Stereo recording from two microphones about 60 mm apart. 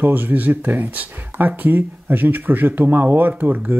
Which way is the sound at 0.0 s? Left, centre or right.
Right.